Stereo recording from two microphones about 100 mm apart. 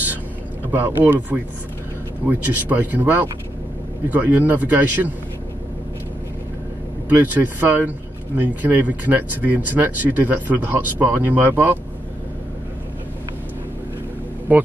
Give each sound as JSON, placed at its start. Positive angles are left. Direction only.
{"t": 0.7, "sound": "speech", "side_deg": -20}
{"t": 7.3, "sound": "speech", "side_deg": -20}
{"t": 14.5, "sound": "speech", "side_deg": -15}